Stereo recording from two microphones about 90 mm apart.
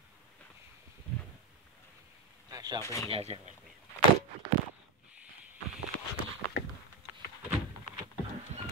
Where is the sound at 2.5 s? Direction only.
50° right (ahead or behind).